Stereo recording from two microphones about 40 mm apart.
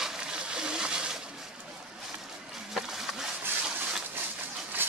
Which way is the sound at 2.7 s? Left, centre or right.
Centre.